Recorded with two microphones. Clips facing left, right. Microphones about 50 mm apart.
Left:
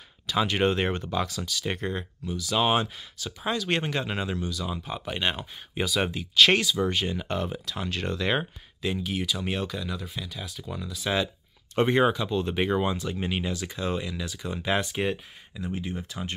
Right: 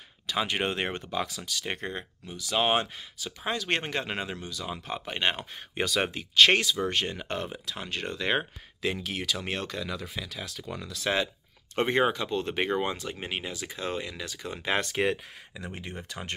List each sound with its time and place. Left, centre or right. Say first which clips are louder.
0.3 s speech: left 4 dB; right
7.5 s speech: left 3 dB; right
8.8 s speech: left 2 dB; right
9.5 s speech: left 2 dB; right
10.7 s speech: left 1 dB; right
11.7 s speech: left 3 dB; right
13.1 s speech: left 5 dB; right
14.8 s speech: right 1 dB; right
15.7 s speech: left 7 dB; right